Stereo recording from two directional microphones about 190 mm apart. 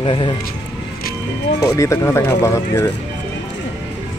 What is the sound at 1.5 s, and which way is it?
Speech, 15° left (ahead or behind).